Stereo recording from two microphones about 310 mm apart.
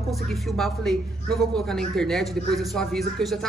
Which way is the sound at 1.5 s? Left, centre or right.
Centre.